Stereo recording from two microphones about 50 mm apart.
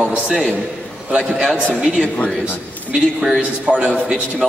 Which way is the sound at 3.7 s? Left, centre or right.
Right.